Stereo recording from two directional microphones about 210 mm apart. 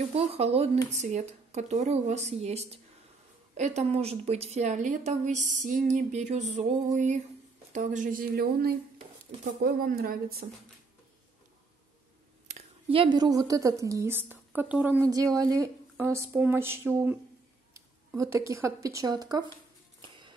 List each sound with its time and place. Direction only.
0.0 s a woman's voice: 30° right (ahead or behind); by 10.4 s 45° right (ahead or behind)
12.4 s a woman's voice: 30° right (ahead or behind)